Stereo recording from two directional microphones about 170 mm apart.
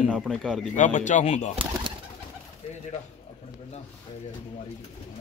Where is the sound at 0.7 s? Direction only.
45° left (ahead or behind).